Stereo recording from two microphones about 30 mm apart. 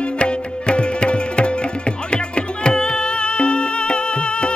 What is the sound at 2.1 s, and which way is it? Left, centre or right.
Music, left.